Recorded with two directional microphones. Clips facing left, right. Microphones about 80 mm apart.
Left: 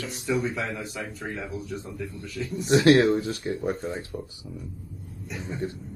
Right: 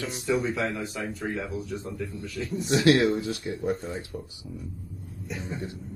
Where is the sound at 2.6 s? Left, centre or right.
Left.